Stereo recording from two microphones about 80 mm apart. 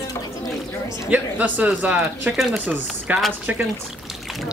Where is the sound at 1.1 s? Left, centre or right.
Centre.